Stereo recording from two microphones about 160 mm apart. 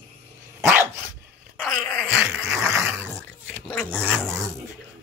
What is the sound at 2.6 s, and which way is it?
Dog, 15° right (ahead or behind).